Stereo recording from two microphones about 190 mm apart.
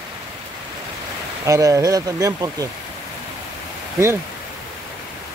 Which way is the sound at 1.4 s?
15° right (ahead or behind).